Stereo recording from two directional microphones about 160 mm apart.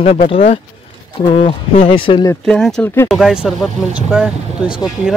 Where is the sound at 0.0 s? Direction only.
40° left (ahead or behind).